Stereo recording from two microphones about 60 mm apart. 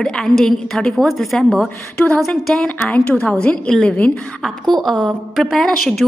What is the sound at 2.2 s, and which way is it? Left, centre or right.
Speech, centre.